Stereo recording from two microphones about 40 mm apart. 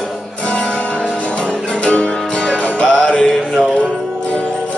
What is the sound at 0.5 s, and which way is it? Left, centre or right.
Music, left.